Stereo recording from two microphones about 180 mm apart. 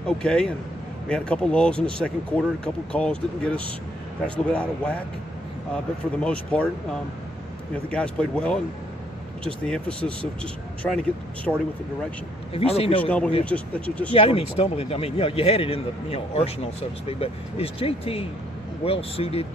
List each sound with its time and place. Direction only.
0.0 s speech: 5° left (ahead or behind)
6.1 s speech: 5° left (ahead or behind)
9.7 s speech: 5° left (ahead or behind)
12.5 s a man's voice: 35° left (ahead or behind)
13.0 s speech: 5° left (ahead or behind)
14.1 s a man's voice: 30° left (ahead or behind)